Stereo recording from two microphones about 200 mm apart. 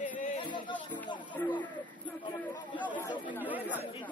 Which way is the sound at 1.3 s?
15° left (ahead or behind).